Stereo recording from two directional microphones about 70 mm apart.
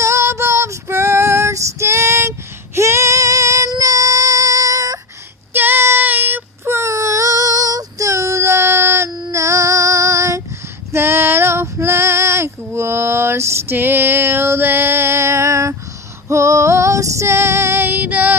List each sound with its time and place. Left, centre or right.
0.0 s female singing: right
5.5 s child singing: right
9.3 s female singing: right
10.9 s female singing: right